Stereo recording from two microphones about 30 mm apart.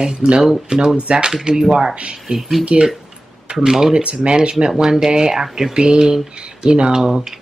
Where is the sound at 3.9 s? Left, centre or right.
Right.